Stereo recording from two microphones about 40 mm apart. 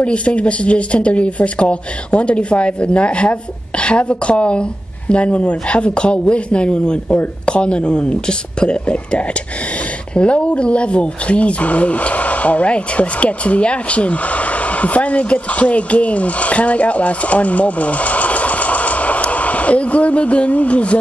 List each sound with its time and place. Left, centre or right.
0.0 s speech: left